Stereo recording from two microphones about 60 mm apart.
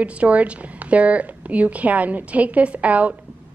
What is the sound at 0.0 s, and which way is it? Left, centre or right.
A woman's voice, right.